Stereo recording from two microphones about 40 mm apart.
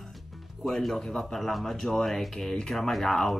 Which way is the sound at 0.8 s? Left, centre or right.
Centre.